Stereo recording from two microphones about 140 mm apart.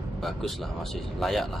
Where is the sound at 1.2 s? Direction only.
Centre (ahead or behind).